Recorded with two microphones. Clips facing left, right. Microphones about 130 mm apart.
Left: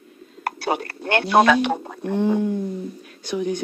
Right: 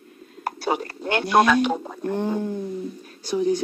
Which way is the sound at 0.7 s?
65° left (ahead or behind).